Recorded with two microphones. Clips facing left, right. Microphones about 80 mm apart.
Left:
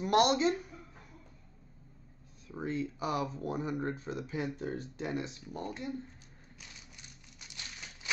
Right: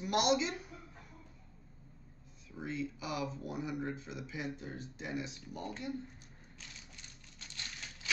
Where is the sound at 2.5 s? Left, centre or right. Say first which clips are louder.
Left 4 dB; left.